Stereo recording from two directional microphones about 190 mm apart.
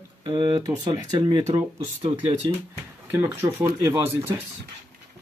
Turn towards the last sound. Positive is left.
turn(degrees=-15)  # may be behind; listen again after turning